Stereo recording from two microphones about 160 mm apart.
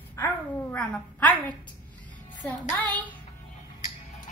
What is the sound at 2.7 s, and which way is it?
Speech, 10° left (ahead or behind).